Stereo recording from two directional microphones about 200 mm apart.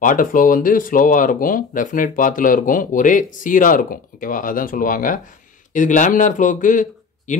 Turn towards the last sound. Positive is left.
turn(degrees=40)  # may be behind; listen again after turning